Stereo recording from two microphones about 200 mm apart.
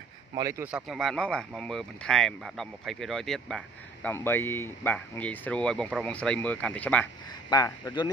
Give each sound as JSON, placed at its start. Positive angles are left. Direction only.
{"t": 0.3, "sound": "speech", "side_deg": -15}
{"t": 7.4, "sound": "speech", "side_deg": 20}